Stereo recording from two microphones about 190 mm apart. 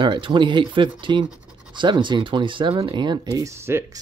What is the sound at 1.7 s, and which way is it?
Speech, 25° right (ahead or behind).